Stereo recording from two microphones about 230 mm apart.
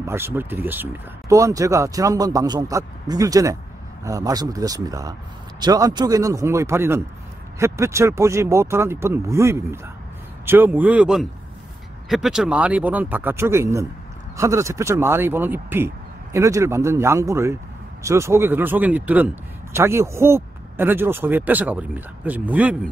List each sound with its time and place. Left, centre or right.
0.0 s speech: centre